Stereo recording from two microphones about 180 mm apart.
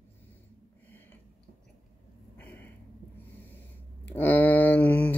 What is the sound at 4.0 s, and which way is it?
Speech, 10° left (ahead or behind).